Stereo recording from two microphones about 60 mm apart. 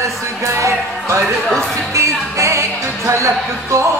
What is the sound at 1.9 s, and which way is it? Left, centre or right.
Music, right.